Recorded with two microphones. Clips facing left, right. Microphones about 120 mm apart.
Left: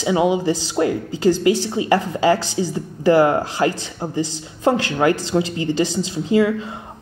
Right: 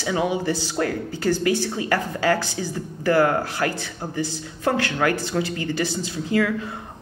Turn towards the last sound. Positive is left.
turn(degrees=15)  # may be behind; listen again after turning